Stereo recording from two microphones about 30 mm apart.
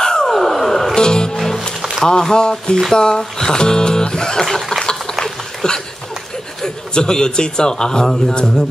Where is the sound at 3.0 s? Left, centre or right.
Left.